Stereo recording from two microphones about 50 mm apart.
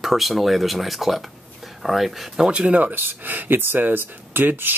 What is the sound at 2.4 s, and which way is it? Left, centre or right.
Speech, right.